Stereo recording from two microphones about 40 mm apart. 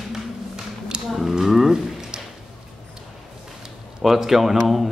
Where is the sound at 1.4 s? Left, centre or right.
Centre.